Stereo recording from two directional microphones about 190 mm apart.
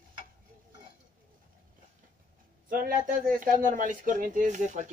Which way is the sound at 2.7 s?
45° right (ahead or behind).